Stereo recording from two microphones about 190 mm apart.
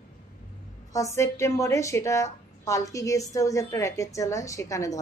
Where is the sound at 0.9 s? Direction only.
15° left (ahead or behind).